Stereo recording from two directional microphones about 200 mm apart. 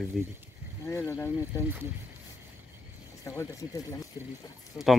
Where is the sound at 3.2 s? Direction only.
15° left (ahead or behind).